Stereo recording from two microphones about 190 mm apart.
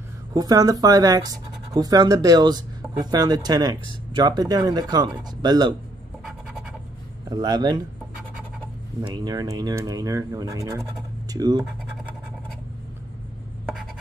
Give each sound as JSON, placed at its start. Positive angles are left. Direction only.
{"t": 0.3, "sound": "speech", "side_deg": -20}
{"t": 7.2, "sound": "speech", "side_deg": -20}
{"t": 9.0, "sound": "speech", "side_deg": -20}